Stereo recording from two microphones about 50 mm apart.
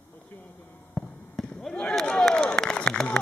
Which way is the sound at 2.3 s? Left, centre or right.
Centre.